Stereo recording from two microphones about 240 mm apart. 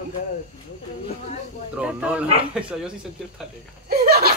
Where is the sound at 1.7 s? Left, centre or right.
Centre.